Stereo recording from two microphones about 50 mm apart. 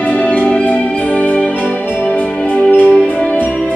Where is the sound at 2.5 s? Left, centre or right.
Left.